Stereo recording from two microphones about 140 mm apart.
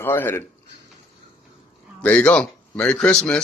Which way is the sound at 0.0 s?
15° left (ahead or behind).